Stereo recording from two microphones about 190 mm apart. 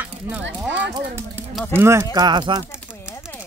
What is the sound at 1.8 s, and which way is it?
Speech, 10° right (ahead or behind).